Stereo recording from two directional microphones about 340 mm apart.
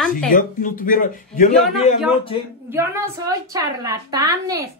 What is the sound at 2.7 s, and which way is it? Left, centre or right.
A woman's voice, centre.